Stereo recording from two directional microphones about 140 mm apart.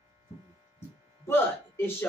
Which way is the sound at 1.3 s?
15° left (ahead or behind).